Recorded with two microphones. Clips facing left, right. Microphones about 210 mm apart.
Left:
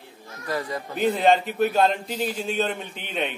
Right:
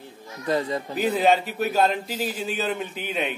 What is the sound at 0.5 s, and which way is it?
Speech, 25° right (ahead or behind).